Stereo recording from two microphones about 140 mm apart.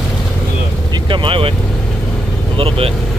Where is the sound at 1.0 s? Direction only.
35° right (ahead or behind).